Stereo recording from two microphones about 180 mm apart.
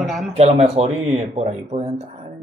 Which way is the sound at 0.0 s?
Centre (ahead or behind).